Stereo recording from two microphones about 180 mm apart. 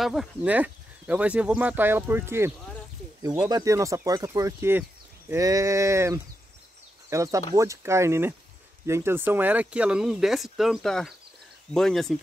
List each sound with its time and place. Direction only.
0.0 s speech: centre (ahead or behind)